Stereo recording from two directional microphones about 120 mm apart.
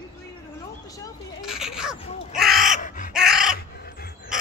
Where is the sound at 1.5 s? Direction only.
5° right (ahead or behind).